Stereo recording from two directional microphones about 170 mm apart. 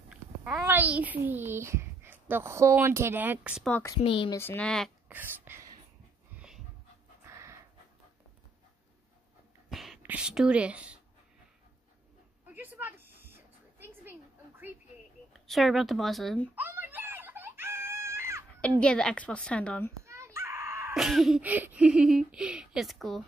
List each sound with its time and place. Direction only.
0.1 s a child's voice: 5° right (ahead or behind)
4.0 s speech: 35° left (ahead or behind)
4.3 s speech: 10° left (ahead or behind)
5.0 s a sound: 10° right (ahead or behind)
6.3 s dog: 5° right (ahead or behind)
7.2 s pant: 15° right (ahead or behind)
9.7 s speech: centre (ahead or behind)
12.4 s a sound: 10° right (ahead or behind)
15.3 s speech: centre (ahead or behind)
16.5 s screaming: 10° right (ahead or behind)
18.8 s a woman's voice: 5° left (ahead or behind)
20.1 s wail: 15° right (ahead or behind)
20.9 s speech: centre (ahead or behind)